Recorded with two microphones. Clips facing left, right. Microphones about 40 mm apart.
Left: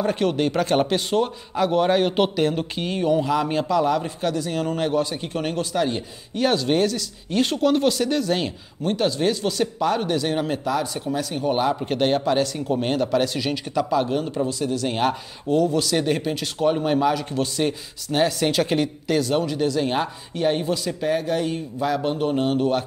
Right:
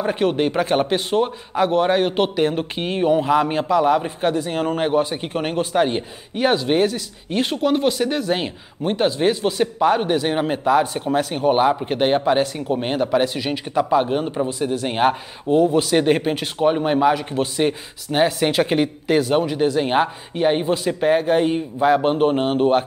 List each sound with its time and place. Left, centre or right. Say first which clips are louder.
0.0 s a man's voice: right 2 dB; centre
6.3 s speech: right 2 dB; centre
16.5 s speech: right 2 dB; right